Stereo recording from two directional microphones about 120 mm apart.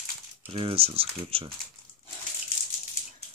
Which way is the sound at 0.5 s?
50° right (ahead or behind).